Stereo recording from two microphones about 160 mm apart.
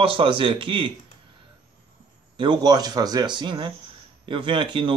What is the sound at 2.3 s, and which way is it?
Speech, 30° right (ahead or behind).